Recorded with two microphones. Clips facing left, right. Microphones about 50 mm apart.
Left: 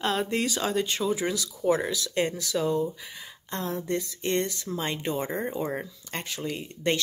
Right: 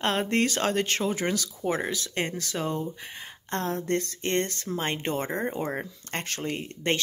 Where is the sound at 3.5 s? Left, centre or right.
Right.